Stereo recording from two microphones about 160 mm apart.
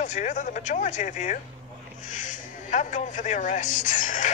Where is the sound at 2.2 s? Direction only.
50° left (ahead or behind).